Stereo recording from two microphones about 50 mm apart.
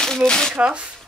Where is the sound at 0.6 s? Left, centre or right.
Centre.